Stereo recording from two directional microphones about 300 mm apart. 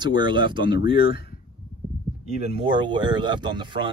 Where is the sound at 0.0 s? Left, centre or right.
Centre.